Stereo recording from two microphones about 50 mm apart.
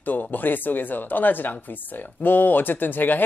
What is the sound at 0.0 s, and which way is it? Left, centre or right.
Speech, left.